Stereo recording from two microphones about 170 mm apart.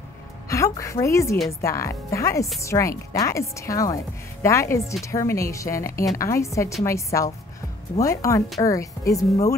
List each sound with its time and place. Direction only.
0.5 s speech: 20° left (ahead or behind)